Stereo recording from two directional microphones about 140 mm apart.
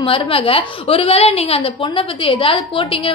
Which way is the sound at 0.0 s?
40° left (ahead or behind).